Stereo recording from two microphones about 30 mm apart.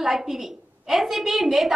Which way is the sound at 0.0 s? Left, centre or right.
Centre.